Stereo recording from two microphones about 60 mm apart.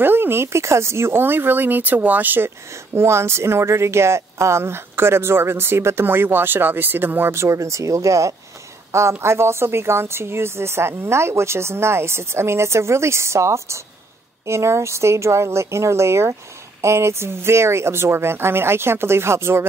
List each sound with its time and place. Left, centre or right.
0.0 s speech: right
2.7 s a woman's voice: right
7.3 s speech: right
9.2 s a woman's voice: right